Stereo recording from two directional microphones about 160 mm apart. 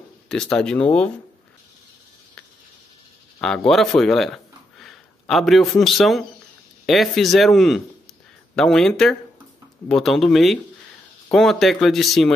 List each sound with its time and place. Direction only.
0.3 s speech: 5° left (ahead or behind)
3.3 s speech: 5° left (ahead or behind)